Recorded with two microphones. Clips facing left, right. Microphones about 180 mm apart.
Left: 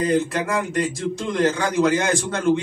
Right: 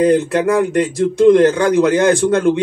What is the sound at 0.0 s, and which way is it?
Speech, 60° right (ahead or behind).